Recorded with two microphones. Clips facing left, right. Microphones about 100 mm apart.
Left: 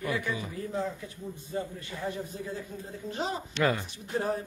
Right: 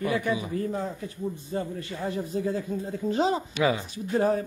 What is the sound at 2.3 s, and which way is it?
Speech, 90° right.